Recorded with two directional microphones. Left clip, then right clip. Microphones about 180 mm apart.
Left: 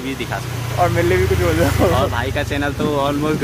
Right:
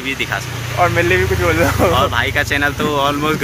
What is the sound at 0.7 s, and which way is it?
Speech, 15° right (ahead or behind).